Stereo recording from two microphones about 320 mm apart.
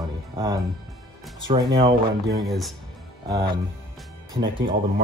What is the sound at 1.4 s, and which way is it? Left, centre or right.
Speech, centre.